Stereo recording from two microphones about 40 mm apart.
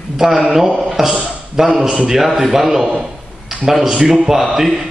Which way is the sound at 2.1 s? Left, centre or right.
Centre.